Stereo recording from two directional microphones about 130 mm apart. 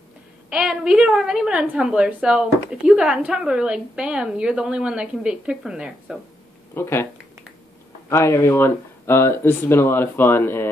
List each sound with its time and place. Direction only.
0.5 s a woman's voice: 5° right (ahead or behind)
6.7 s speech: 20° left (ahead or behind)
8.1 s speech: 20° left (ahead or behind)